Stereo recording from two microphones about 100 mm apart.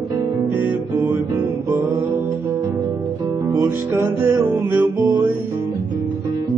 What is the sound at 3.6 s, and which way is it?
Music, 25° right (ahead or behind).